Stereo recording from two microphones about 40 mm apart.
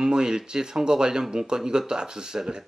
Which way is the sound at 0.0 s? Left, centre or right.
Centre.